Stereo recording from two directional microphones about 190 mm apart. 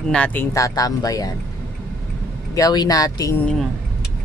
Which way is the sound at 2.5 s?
20° left (ahead or behind).